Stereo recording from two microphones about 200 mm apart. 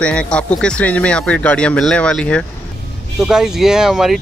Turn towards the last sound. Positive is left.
turn(degrees=0)  # may be behind; listen again after turning